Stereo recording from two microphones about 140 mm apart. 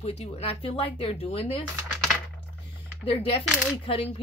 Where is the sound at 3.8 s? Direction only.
40° left (ahead or behind).